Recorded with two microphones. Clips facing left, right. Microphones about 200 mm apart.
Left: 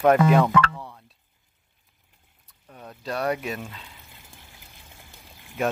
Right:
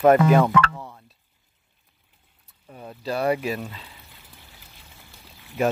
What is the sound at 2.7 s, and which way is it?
Speech, 5° right (ahead or behind).